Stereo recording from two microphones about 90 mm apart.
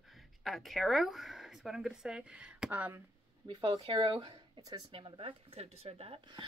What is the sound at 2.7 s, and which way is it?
Speech, 20° right (ahead or behind).